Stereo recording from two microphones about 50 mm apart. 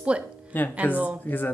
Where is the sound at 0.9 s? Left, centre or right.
Right.